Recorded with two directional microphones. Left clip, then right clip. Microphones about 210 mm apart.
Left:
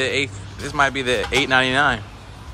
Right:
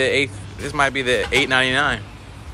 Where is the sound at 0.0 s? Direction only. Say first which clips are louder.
Right 3 dB; 15° left (ahead or behind).